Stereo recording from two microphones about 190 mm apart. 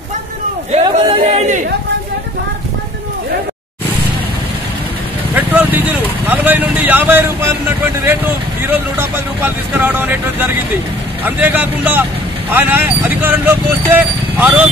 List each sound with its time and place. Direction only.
0.7 s speech: 35° right (ahead or behind)
5.3 s vehicle: 10° right (ahead or behind)
6.2 s speech: 10° right (ahead or behind)
8.6 s speech: 10° right (ahead or behind)